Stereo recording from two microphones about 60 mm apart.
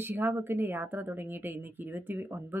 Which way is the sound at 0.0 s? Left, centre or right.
Right.